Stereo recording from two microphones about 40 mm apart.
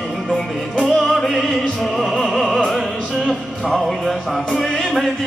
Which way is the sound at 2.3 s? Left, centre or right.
Centre.